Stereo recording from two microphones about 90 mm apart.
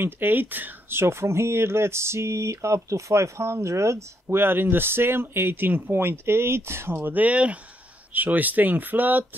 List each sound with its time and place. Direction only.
0.0 s speech: 25° right (ahead or behind)